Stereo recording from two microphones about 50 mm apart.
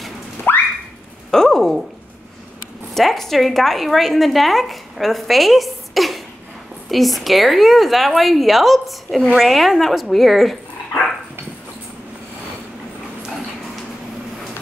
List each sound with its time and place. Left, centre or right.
0.5 s car alarm: left
1.3 s a sound: centre
2.9 s a woman's voice: centre